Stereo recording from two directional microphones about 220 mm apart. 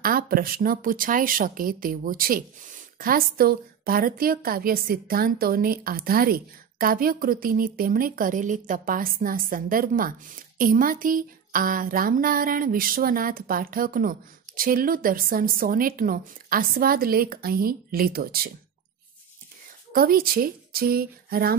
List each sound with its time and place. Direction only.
0.0 s speech: 40° right (ahead or behind)
19.9 s speech: 40° right (ahead or behind)